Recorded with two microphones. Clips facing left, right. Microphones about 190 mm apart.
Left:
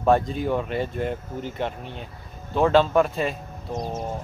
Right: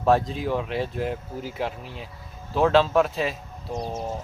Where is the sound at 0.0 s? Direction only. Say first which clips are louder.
Left 1 dB; centre (ahead or behind).